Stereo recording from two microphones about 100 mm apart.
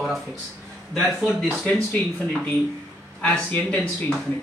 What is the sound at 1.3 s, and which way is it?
Speech, 15° left (ahead or behind).